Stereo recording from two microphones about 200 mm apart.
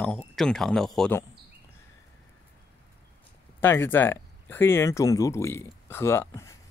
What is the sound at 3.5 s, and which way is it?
Speech, 10° left (ahead or behind).